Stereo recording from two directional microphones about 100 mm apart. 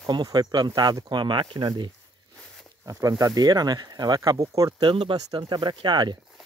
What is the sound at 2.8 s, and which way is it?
Speech, 35° right (ahead or behind).